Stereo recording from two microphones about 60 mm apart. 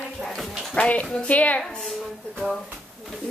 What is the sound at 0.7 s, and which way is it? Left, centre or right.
Speech, left.